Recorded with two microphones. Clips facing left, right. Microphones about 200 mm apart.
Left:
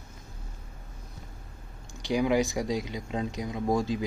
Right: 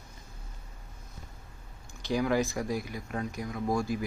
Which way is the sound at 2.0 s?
15° left (ahead or behind).